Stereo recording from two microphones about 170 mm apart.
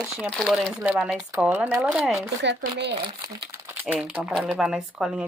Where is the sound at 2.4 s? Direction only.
90° right.